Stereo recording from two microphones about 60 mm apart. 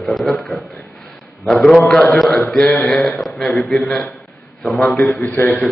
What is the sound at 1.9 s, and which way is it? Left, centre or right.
Speech, centre.